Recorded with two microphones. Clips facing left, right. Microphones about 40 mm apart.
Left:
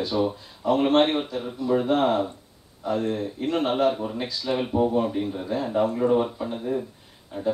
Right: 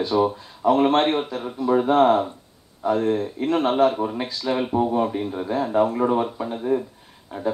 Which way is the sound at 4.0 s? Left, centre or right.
Right.